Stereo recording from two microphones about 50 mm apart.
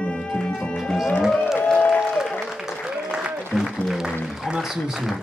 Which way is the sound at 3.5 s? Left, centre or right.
Centre.